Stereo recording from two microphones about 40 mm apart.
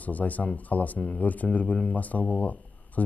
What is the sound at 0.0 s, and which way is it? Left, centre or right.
Speech, left.